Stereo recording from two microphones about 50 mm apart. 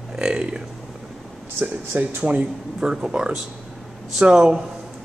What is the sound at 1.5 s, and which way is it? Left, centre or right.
Speech, right.